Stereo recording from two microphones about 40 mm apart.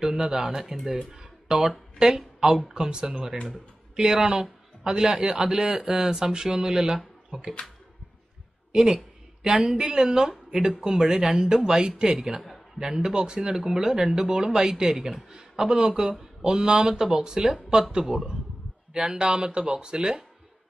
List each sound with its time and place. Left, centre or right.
0.2 s speech: centre
1.1 s a sound: centre
2.0 s a woman's voice: centre
8.7 s a woman's voice: centre